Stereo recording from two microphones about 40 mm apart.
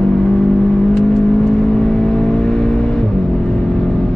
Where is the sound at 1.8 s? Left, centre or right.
Centre.